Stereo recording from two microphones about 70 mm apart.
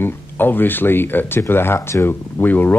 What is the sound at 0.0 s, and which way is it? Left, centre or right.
Speech, left.